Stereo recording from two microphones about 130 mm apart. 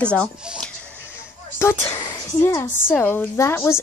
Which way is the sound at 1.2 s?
20° left (ahead or behind).